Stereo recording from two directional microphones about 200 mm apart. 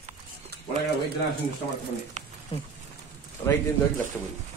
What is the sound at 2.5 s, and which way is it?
Speech, 25° left (ahead or behind).